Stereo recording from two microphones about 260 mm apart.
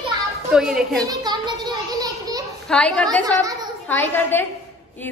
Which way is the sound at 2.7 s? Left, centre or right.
Centre.